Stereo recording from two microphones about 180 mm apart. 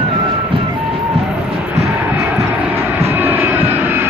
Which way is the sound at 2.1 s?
10° right (ahead or behind).